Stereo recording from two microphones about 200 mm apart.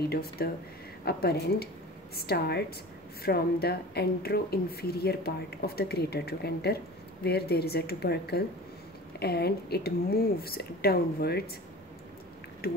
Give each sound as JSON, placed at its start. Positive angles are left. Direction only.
{"t": 0.1, "sound": "speech", "side_deg": 50}
{"t": 12.6, "sound": "speech", "side_deg": 50}